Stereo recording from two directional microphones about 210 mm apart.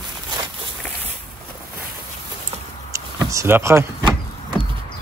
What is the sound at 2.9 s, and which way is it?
Speech, 15° right (ahead or behind).